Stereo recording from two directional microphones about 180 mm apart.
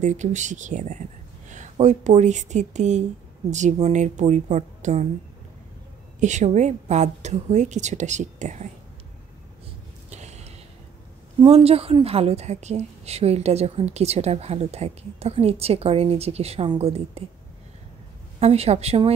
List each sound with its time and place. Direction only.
0.0 s a woman's voice: 40° right (ahead or behind)
6.1 s a woman's voice: 40° right (ahead or behind)
10.0 s a sound: 40° right (ahead or behind)
11.3 s a woman's voice: 35° right (ahead or behind)
18.4 s a woman's voice: 35° right (ahead or behind)